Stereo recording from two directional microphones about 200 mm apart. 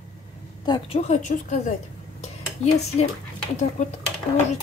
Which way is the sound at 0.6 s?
30° left (ahead or behind).